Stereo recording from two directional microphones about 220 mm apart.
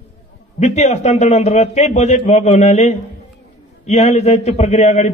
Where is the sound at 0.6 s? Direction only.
30° left (ahead or behind).